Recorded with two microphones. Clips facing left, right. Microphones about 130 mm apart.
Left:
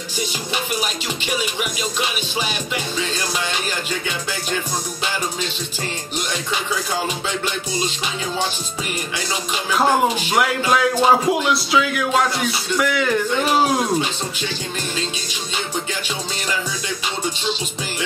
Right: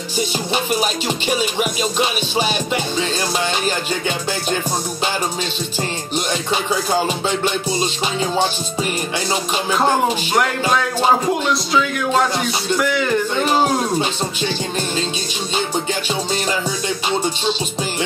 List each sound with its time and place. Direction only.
0.7 s music: 35° right (ahead or behind)
6.5 s music: 30° right (ahead or behind)
10.7 s music: 5° left (ahead or behind)